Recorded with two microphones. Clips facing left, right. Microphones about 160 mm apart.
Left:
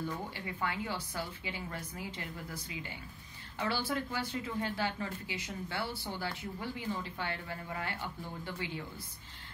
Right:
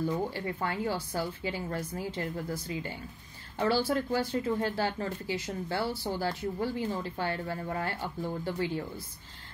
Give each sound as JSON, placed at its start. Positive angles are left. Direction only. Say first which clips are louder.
{"t": 0.3, "sound": "speech", "louder": "right 5 dB", "side_deg": -40}